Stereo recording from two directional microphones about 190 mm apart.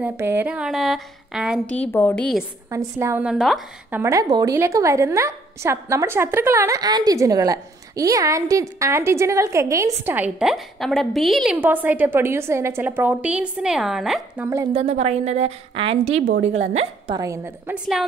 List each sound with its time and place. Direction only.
0.0 s a woman's voice: 10° right (ahead or behind)
1.7 s a woman's voice: 10° left (ahead or behind)
2.7 s a woman's voice: 15° right (ahead or behind)
4.0 s a woman's voice: 15° right (ahead or behind)
14.7 s a woman's voice: 35° right (ahead or behind)
17.1 s a woman's voice: 15° right (ahead or behind)